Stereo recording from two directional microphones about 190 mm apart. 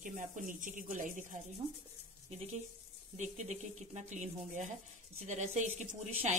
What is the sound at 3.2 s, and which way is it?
Speech, 40° right (ahead or behind).